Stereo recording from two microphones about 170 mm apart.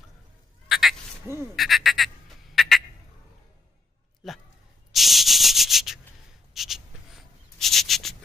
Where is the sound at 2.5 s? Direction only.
Centre (ahead or behind).